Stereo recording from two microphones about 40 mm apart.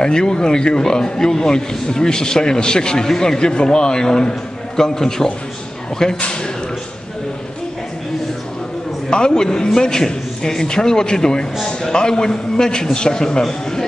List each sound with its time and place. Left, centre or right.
0.0 s a man's voice: centre
9.1 s a man's voice: centre